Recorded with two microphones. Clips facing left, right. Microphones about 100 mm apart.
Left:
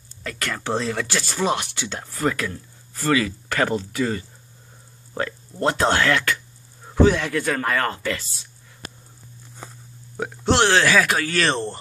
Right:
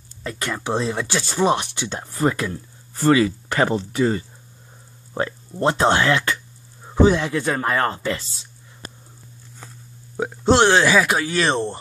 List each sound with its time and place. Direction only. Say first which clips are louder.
0.2 s speech: right 2 dB; 20° right (ahead or behind)
10.1 s speech: right 4 dB; 15° right (ahead or behind)